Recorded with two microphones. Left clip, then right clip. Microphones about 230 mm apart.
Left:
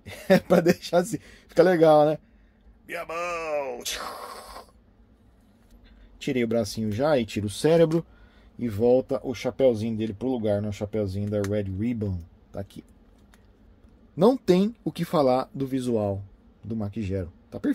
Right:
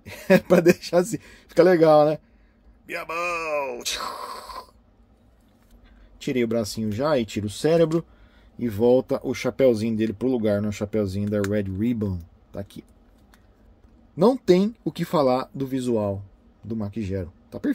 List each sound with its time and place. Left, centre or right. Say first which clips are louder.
0.0 s speech: right 2 dB; centre
6.1 s speech: right 1 dB; centre
8.5 s speech: right 2 dB; centre
14.1 s speech: right 2 dB; centre